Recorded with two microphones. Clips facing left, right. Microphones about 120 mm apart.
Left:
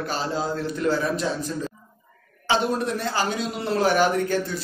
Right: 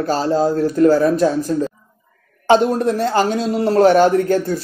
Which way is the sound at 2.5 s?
50° right (ahead or behind).